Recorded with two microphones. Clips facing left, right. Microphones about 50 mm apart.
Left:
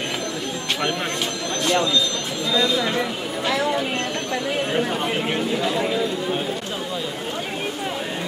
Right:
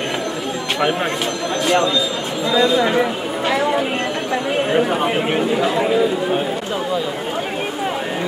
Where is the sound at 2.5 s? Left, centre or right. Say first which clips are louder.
Right 6 dB; centre.